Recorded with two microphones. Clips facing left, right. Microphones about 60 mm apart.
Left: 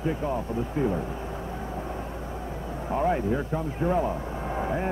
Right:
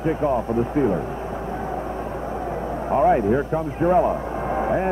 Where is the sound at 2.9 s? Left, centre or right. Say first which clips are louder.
Right 8 dB; right.